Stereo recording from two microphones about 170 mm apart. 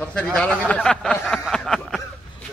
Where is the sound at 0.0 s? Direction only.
5° left (ahead or behind).